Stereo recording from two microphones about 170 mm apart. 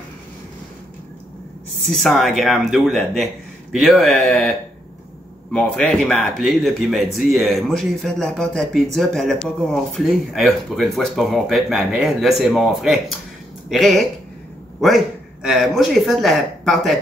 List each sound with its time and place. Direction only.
1.9 s speech: centre (ahead or behind)